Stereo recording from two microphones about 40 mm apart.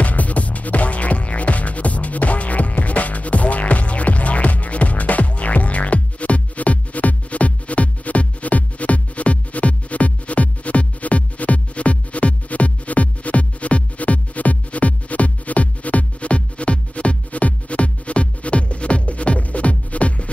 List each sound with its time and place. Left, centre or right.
0.0 s music: left